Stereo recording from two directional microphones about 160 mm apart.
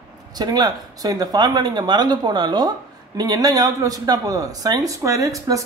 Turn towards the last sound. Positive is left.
turn(degrees=-20)  # may be behind; listen again after turning